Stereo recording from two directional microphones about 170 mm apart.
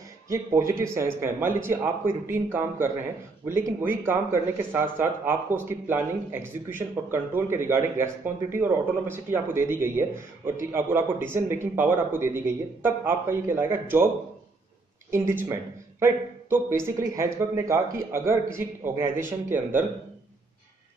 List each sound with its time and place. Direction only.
0.3 s speech: 15° right (ahead or behind)
15.0 s speech: 15° right (ahead or behind)